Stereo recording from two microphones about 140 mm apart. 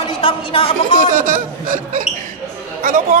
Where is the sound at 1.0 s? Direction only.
70° right (ahead or behind).